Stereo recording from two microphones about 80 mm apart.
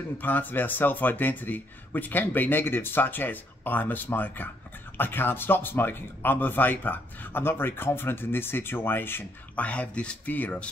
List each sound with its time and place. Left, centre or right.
0.2 s speech: left